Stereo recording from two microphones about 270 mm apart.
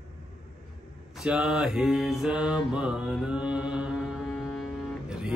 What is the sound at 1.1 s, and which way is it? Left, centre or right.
Mantra, centre.